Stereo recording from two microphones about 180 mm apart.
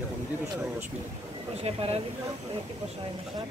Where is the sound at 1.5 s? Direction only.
35° right (ahead or behind).